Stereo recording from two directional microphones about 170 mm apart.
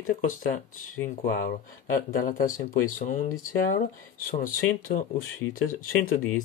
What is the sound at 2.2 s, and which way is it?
Speech, 50° left (ahead or behind).